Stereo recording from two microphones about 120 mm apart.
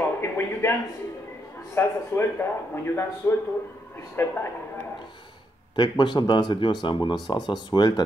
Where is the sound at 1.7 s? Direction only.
20° left (ahead or behind).